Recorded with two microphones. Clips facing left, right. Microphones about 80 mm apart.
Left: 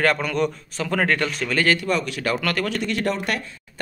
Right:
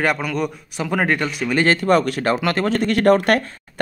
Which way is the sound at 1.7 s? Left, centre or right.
Right.